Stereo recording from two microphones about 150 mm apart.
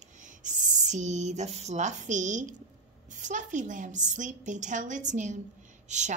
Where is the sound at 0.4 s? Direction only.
55° right (ahead or behind).